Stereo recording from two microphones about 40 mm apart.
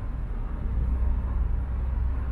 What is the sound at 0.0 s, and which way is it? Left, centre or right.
Vehicle, centre.